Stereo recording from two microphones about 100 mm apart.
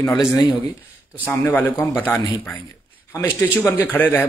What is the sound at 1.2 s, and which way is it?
Speech, 15° left (ahead or behind).